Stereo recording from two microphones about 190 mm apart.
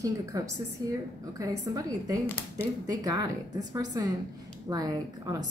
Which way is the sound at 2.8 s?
20° right (ahead or behind).